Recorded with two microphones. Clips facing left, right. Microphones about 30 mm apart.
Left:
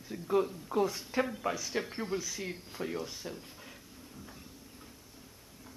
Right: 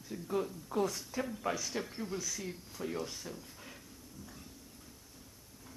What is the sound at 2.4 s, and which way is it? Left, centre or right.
Speech, left.